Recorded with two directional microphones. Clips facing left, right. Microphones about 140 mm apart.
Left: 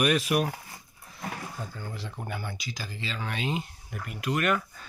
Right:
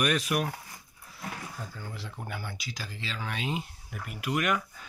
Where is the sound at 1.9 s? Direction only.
Centre (ahead or behind).